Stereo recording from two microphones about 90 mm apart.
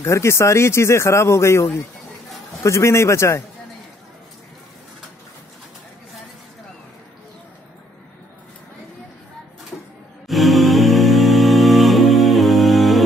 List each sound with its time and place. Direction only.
0.0 s speech: 30° left (ahead or behind)
10.2 s music: centre (ahead or behind)